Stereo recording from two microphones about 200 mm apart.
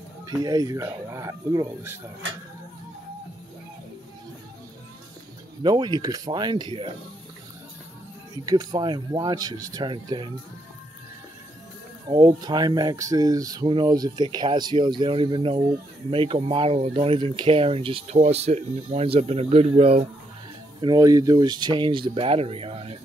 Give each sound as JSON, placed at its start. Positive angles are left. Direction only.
{"t": 0.3, "sound": "speech", "side_deg": -15}
{"t": 5.6, "sound": "speech", "side_deg": -20}
{"t": 8.5, "sound": "speech", "side_deg": -20}
{"t": 12.1, "sound": "speech", "side_deg": -20}